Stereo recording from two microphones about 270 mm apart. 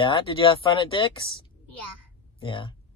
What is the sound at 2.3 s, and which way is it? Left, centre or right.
Speech, centre.